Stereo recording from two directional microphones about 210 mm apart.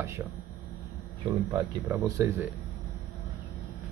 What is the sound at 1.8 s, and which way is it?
Speech, 15° right (ahead or behind).